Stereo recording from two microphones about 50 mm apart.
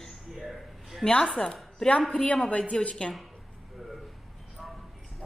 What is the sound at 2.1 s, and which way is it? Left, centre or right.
A woman's voice, left.